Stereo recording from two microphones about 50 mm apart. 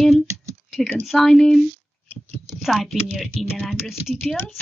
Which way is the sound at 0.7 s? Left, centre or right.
Left.